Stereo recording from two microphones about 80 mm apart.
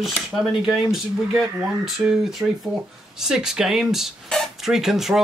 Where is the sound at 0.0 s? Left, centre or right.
Centre.